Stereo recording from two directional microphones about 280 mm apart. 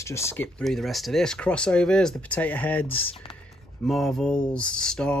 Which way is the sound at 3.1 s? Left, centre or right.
Centre.